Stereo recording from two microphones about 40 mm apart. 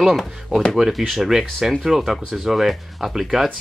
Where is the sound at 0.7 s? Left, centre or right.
Centre.